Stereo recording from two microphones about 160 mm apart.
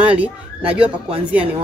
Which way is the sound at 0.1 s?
10° right (ahead or behind).